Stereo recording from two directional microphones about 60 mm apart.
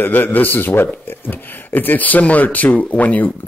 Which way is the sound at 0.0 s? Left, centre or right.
Left.